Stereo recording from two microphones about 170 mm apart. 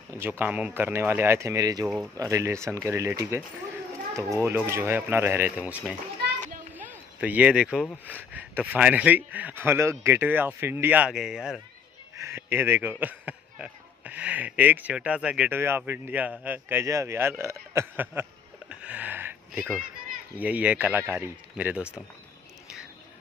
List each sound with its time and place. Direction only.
0.1 s a man's voice: 10° right (ahead or behind)
12.2 s a man's voice: 15° right (ahead or behind)
18.7 s a sound: 10° right (ahead or behind)
20.3 s a man's voice: 10° right (ahead or behind)